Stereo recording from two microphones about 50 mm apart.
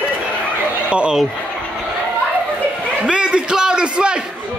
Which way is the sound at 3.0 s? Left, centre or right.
Centre.